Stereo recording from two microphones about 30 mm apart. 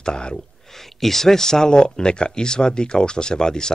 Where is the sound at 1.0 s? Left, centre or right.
Centre.